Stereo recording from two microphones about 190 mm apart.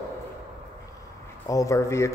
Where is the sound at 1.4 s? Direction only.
15° left (ahead or behind).